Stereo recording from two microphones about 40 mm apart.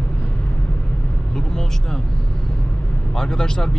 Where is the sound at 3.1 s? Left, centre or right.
Centre.